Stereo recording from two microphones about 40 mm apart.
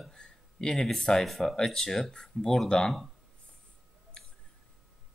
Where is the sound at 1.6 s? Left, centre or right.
Centre.